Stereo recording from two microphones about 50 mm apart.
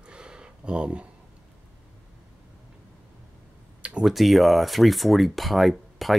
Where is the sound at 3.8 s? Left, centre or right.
Right.